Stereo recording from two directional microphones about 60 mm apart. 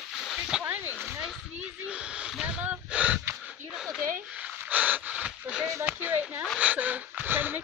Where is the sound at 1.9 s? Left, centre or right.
Centre.